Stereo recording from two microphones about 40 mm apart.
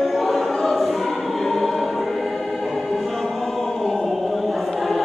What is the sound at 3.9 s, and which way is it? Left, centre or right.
Choir, centre.